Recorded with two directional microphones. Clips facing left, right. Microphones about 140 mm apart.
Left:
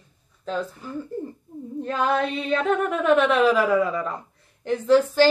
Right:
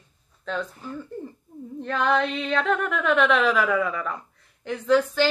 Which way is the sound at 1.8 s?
35° left (ahead or behind).